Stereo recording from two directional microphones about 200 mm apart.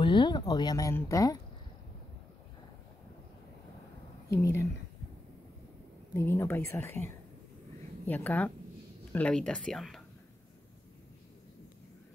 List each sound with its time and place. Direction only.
0.0 s speech: 25° left (ahead or behind)
4.3 s speech: 15° left (ahead or behind)
6.1 s speech: 10° left (ahead or behind)
8.1 s speech: 10° left (ahead or behind)